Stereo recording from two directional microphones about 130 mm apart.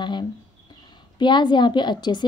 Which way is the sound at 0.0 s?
35° left (ahead or behind).